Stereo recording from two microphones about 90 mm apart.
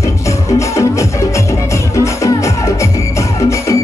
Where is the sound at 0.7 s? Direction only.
35° left (ahead or behind).